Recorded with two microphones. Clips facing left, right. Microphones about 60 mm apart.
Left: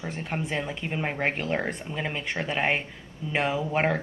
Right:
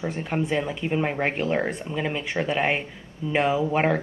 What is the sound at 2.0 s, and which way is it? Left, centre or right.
Speech, centre.